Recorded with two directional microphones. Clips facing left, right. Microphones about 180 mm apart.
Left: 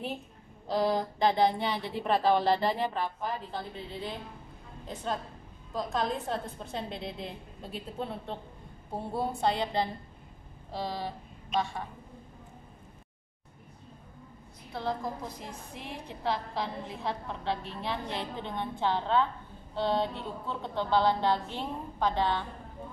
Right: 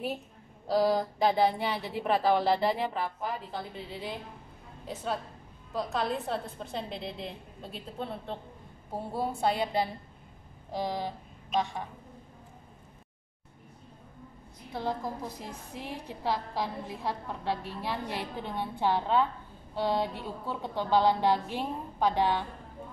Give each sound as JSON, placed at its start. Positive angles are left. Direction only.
{"t": 0.7, "sound": "a woman's voice", "side_deg": -5}
{"t": 14.7, "sound": "speech", "side_deg": -15}